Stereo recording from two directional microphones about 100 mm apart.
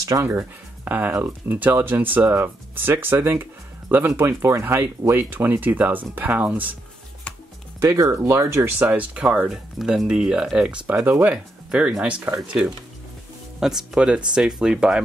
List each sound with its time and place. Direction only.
0.0 s speech: 35° right (ahead or behind)
0.3 s speech: 20° right (ahead or behind)
7.3 s music: 10° left (ahead or behind)
7.8 s speech: 30° right (ahead or behind)
8.8 s speech: 10° right (ahead or behind)
9.5 s speech: 5° right (ahead or behind); by 11.3 s 20° right (ahead or behind)
11.7 s speech: 10° right (ahead or behind)
13.6 s speech: 5° right (ahead or behind)